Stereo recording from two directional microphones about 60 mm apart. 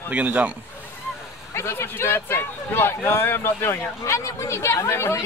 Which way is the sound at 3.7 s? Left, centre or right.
Left.